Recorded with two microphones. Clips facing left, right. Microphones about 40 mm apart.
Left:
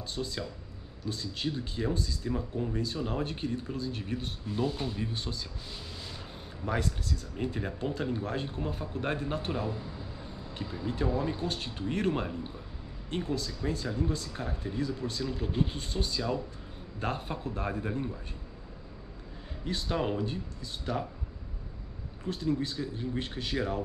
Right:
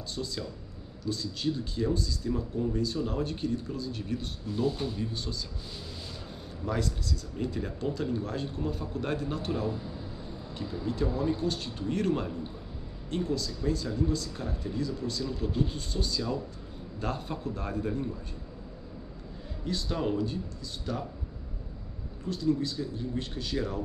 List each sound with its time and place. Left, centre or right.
0.1 s speech: left
6.6 s speech: left
19.6 s speech: left
22.2 s speech: left